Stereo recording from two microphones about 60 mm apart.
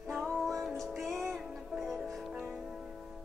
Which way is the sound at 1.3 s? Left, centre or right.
Centre.